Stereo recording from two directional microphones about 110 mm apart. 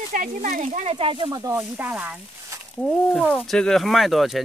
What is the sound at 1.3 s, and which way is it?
Speech, 35° right (ahead or behind).